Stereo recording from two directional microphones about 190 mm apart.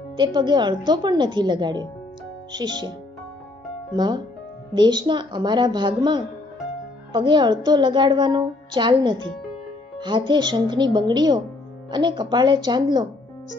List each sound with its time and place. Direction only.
0.1 s a woman's voice: 25° right (ahead or behind)
3.9 s a woman's voice: 25° right (ahead or behind)